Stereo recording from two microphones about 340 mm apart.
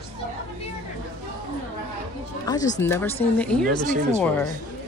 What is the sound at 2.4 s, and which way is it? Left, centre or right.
Speech, centre.